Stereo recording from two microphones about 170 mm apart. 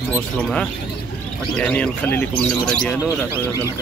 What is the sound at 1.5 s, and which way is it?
Speech, 5° left (ahead or behind).